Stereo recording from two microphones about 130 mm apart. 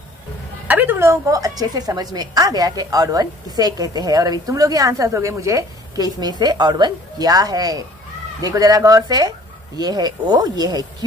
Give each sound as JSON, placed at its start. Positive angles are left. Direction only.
{"t": 0.7, "sound": "a woman's voice", "side_deg": -15}